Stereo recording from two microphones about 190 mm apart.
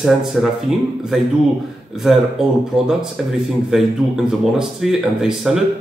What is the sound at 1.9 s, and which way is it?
Speech, 5° right (ahead or behind).